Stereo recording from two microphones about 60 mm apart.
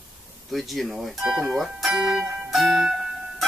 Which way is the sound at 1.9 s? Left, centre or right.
Centre.